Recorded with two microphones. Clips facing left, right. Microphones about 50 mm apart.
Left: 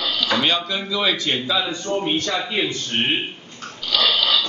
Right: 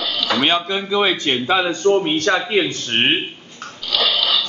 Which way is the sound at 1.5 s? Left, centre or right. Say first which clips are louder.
Right 7 dB; right.